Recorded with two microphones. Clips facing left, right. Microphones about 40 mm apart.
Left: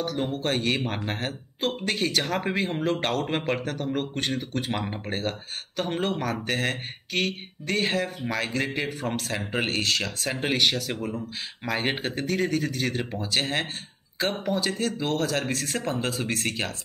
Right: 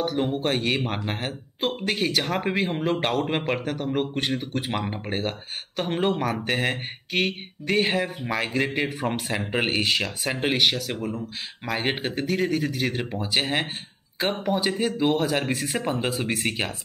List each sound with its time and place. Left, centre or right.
0.0 s speech: centre